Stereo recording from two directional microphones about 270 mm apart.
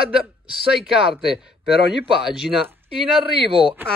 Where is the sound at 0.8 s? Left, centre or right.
Centre.